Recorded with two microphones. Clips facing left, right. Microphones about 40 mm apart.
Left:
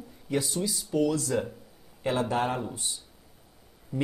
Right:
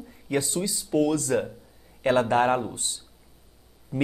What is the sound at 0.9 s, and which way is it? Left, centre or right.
Speech, right.